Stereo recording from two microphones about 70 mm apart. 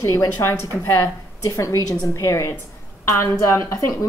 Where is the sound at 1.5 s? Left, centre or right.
Left.